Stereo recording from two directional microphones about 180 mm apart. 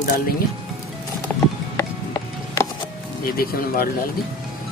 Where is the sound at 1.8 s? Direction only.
15° left (ahead or behind).